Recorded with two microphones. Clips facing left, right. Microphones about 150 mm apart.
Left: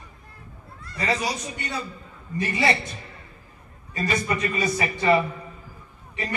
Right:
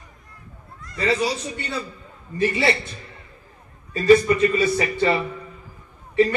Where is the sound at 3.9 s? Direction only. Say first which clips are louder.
Right 11 dB; 30° right (ahead or behind).